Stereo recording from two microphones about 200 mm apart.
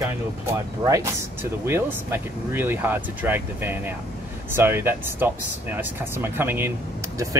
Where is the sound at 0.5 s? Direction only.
15° right (ahead or behind).